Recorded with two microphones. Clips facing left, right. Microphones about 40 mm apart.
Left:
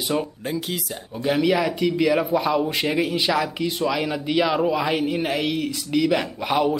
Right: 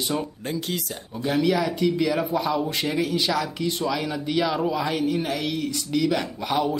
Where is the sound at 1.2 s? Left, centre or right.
Left.